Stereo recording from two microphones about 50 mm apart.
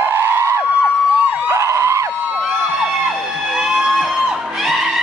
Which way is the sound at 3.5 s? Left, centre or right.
Centre.